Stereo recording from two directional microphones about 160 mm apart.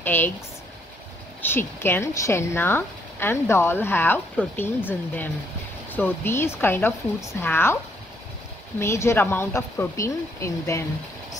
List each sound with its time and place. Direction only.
0.0 s speech: 15° left (ahead or behind)
1.4 s speech: 15° left (ahead or behind)